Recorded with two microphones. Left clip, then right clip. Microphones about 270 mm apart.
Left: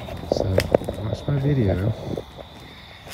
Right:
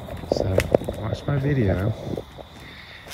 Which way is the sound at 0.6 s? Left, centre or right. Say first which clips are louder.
Even; right.